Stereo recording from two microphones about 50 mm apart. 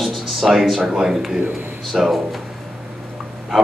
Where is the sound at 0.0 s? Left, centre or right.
Centre.